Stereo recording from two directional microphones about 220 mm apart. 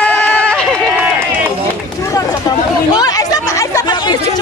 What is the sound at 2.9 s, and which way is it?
Chatter, 15° left (ahead or behind).